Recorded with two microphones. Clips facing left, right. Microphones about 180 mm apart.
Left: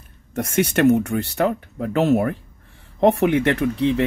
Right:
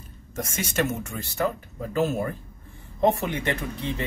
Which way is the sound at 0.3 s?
65° left (ahead or behind).